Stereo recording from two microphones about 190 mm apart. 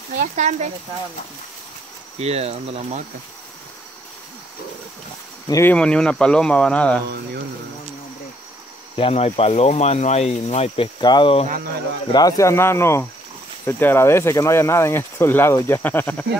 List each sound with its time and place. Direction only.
0.1 s speech: 40° right (ahead or behind)
2.1 s speech: 35° right (ahead or behind)
5.5 s speech: 10° left (ahead or behind)
8.9 s speech: 30° left (ahead or behind); by 16.3 s 10° left (ahead or behind)